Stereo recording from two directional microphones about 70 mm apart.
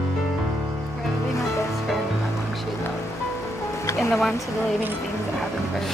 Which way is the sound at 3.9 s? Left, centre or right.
Centre.